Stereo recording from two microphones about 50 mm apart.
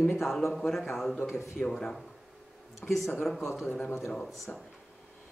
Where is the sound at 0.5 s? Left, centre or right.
Centre.